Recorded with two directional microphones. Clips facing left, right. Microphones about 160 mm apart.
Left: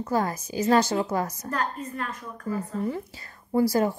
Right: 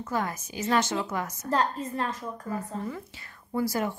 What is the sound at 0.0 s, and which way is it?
A woman's voice, 35° left (ahead or behind).